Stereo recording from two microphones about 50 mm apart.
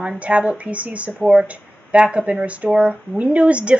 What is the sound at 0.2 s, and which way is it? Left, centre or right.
Speech, right.